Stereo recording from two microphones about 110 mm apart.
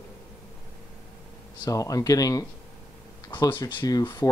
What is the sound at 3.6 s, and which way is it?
Speech, 35° left (ahead or behind).